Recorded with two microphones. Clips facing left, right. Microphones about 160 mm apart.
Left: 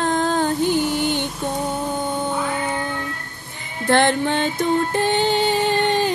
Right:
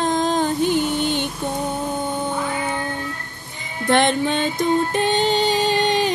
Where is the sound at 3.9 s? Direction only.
20° right (ahead or behind).